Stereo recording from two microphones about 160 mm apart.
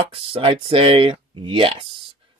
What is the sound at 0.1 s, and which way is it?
Speech, 35° right (ahead or behind).